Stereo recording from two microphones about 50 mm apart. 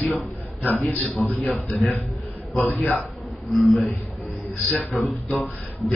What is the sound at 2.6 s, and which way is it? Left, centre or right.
Speech, left.